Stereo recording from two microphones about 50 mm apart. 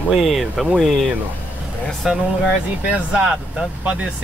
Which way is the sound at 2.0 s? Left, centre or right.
Centre.